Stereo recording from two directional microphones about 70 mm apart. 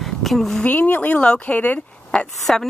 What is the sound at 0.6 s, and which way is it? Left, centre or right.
Speech, left.